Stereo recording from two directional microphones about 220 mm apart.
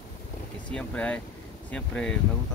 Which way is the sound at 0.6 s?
5° left (ahead or behind).